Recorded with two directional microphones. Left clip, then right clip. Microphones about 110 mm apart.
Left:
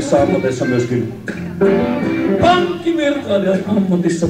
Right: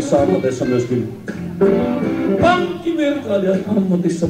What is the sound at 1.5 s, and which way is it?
Music, 50° right (ahead or behind).